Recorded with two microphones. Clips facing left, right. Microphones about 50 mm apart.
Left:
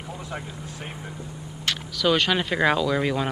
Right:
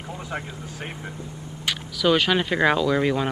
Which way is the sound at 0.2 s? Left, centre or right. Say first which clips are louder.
Right 2 dB; right.